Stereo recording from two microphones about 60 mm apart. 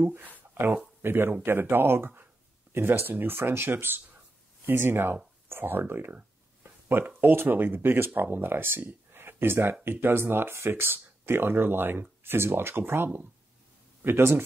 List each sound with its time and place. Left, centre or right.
0.0 s speech: right